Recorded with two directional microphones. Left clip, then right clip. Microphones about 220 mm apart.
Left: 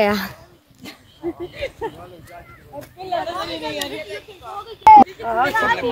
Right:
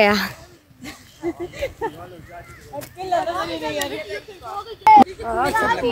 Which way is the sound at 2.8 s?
35° right (ahead or behind).